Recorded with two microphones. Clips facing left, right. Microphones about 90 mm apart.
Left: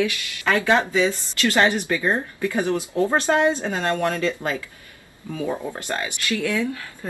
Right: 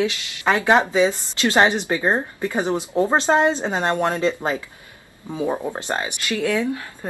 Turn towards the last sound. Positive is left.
turn(degrees=-20)  # may be behind; listen again after turning